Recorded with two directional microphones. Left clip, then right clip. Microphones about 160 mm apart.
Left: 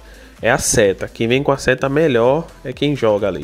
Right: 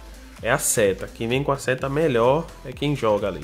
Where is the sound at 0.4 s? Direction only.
35° left (ahead or behind).